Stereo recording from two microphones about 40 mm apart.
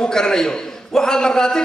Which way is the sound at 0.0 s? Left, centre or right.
Centre.